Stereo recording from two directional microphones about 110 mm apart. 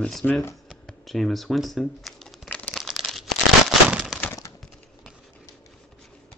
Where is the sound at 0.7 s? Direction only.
Centre (ahead or behind).